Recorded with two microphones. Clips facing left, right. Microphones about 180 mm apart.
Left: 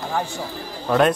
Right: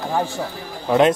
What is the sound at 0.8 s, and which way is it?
Speech, 20° right (ahead or behind).